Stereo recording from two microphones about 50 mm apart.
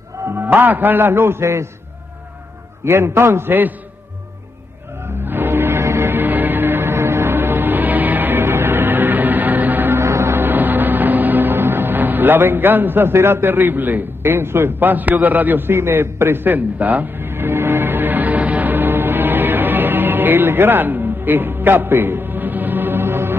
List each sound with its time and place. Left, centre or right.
0.4 s a man's voice: right
1.4 s a man's voice: right
2.8 s a man's voice: right
5.2 s music: right
5.8 s music: right
6.1 s music: right
6.9 s music: right
7.3 s music: right
9.9 s music: right
10.3 s music: right
15.1 s a man's voice: right
17.2 s music: right